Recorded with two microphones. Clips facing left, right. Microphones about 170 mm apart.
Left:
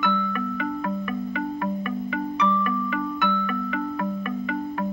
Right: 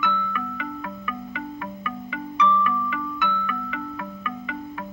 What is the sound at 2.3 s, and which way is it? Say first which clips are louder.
Music: right 4 dB; 45° left (ahead or behind).